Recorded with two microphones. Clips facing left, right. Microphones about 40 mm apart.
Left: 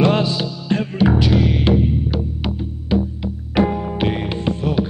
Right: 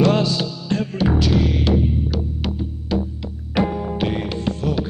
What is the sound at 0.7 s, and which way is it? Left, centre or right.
Music, left.